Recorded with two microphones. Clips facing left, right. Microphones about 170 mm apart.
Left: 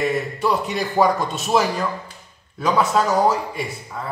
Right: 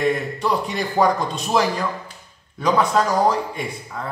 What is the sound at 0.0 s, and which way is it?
A man's voice, 5° left (ahead or behind).